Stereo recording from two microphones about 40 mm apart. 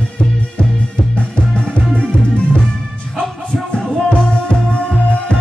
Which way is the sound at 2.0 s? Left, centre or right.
Left.